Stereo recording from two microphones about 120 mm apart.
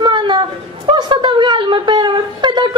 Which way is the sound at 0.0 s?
40° right (ahead or behind).